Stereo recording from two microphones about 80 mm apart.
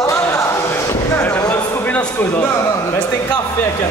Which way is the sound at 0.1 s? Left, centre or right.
Left.